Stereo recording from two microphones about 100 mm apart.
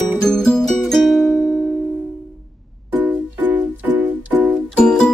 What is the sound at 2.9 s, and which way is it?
Music, 15° right (ahead or behind).